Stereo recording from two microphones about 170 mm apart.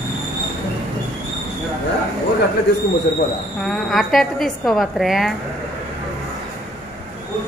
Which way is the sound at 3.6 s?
Centre (ahead or behind).